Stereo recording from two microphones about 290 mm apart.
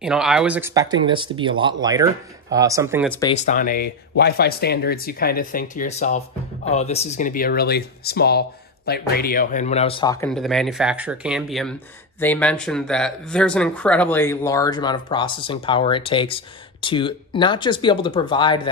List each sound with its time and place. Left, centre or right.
0.0 s speech: centre
3.1 s speech: centre
3.3 s speech: left
10.2 s speech: centre